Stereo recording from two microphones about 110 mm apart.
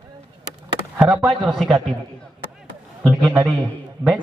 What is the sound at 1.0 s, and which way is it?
Speech, centre (ahead or behind).